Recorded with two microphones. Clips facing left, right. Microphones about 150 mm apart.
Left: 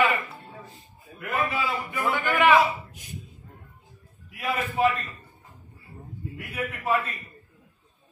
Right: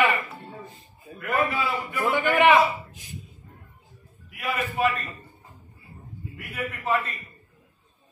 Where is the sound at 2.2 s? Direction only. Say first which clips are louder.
Right 2 dB; 15° right (ahead or behind).